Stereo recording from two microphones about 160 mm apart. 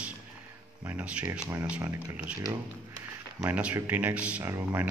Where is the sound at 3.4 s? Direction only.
10° right (ahead or behind).